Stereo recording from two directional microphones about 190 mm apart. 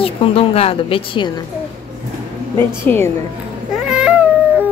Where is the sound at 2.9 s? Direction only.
10° left (ahead or behind).